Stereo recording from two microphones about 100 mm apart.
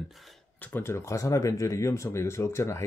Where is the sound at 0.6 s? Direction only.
20° left (ahead or behind).